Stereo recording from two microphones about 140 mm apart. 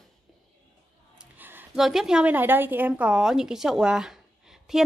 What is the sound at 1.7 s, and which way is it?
A woman's voice, 5° right (ahead or behind).